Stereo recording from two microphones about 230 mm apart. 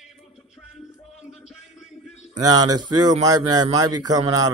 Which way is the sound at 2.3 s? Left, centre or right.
Centre.